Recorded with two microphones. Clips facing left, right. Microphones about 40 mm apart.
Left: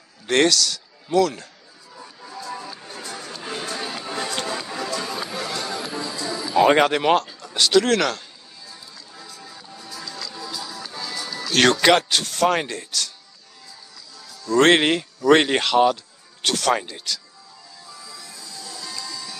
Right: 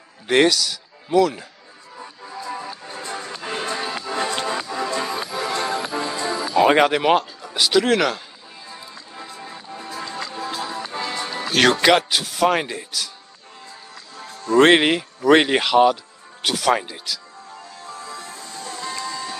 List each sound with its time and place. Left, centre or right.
0.3 s a man's voice: centre
2.0 s music: centre
2.9 s music: right
6.5 s speech: centre
8.6 s music: right
11.8 s speech: centre
14.1 s music: right
14.6 s speech: centre
17.8 s music: right